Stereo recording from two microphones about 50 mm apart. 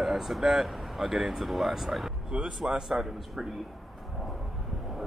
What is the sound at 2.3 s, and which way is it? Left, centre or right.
A man's voice, right.